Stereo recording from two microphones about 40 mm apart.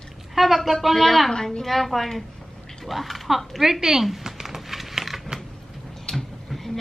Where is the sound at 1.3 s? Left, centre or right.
Centre.